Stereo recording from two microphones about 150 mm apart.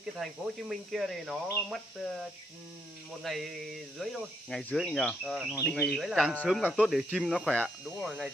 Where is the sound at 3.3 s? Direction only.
Centre (ahead or behind).